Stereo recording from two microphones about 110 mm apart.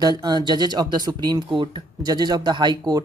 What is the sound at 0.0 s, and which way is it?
Speech, 40° right (ahead or behind).